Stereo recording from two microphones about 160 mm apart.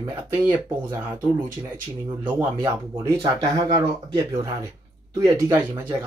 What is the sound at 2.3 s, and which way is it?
Speech, 20° right (ahead or behind).